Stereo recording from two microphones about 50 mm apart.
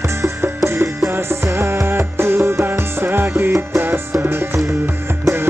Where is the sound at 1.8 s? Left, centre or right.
Right.